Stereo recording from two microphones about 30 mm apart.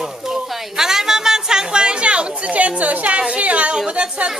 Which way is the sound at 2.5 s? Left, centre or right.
Right.